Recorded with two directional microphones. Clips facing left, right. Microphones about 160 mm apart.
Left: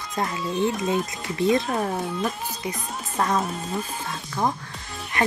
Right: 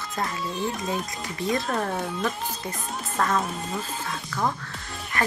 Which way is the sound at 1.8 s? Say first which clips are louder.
Left 1 dB; 5° left (ahead or behind).